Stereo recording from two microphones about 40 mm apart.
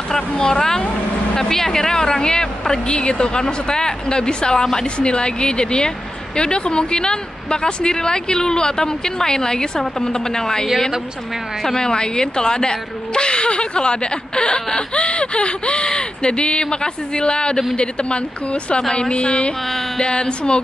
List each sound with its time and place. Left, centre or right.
0.1 s a woman's voice: centre